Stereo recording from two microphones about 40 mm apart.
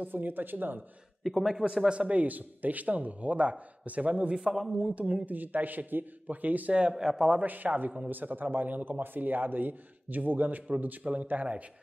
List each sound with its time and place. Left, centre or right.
0.0 s a man's voice: right
1.2 s a man's voice: centre
1.9 s a man's voice: right
4.3 s a man's voice: centre
4.9 s a man's voice: right
6.7 s speech: right
7.0 s a man's voice: centre
7.4 s a man's voice: right